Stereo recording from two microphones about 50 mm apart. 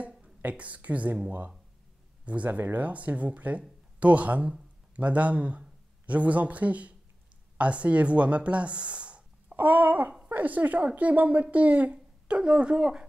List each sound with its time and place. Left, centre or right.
0.5 s speech: right
2.2 s speech: right
9.6 s babbling: right
10.2 s speech: right